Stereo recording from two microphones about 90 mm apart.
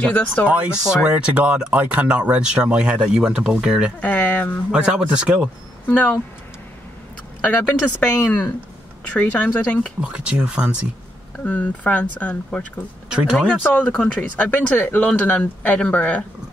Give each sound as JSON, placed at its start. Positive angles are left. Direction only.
{"t": 0.0, "sound": "speech", "side_deg": 15}
{"t": 0.5, "sound": "speech", "side_deg": -15}
{"t": 4.0, "sound": "speech", "side_deg": 15}
{"t": 4.6, "sound": "speech", "side_deg": -10}
{"t": 5.9, "sound": "speech", "side_deg": 15}
{"t": 7.4, "sound": "speech", "side_deg": 20}
{"t": 10.0, "sound": "speech", "side_deg": -10}
{"t": 11.4, "sound": "speech", "side_deg": 15}
{"t": 13.1, "sound": "speech", "side_deg": -10}
{"t": 13.7, "sound": "speech", "side_deg": 15}